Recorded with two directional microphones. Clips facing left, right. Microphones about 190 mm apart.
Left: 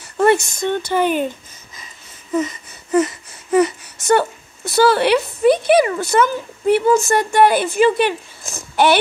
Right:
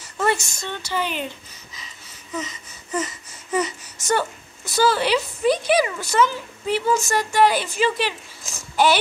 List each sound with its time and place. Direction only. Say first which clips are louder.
0.0 s speech: left 8 dB; 60° left (ahead or behind)
2.3 s a sound: left 10 dB; 55° left (ahead or behind)
3.5 s speech: left 9 dB; 60° left (ahead or behind)